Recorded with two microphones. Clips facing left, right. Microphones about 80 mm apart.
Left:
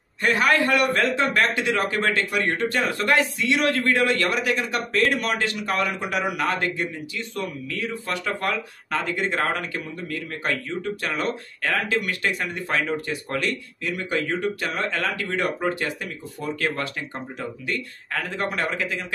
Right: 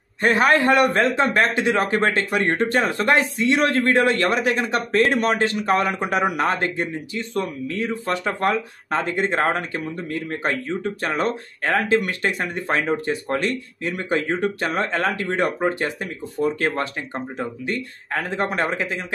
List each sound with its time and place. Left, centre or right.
0.2 s a man's voice: right